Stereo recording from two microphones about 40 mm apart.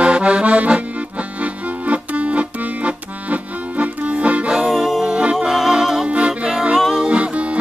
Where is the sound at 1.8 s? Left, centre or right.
Right.